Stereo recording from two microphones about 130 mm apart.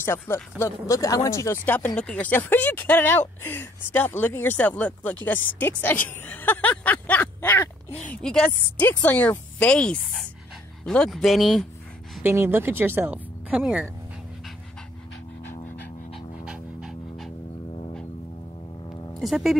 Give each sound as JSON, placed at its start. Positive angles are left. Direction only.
{"t": 0.0, "sound": "speech", "side_deg": 20}
{"t": 2.0, "sound": "speech", "side_deg": 10}
{"t": 12.2, "sound": "speech", "side_deg": -15}
{"t": 16.4, "sound": "dog", "side_deg": -5}
{"t": 19.1, "sound": "speech", "side_deg": 0}